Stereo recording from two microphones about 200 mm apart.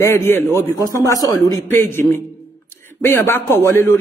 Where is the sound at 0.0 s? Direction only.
10° left (ahead or behind).